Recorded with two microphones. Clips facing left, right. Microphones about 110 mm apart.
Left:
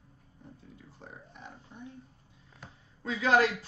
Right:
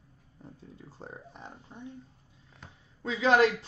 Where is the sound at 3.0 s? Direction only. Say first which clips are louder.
Right 2 dB; 30° right (ahead or behind).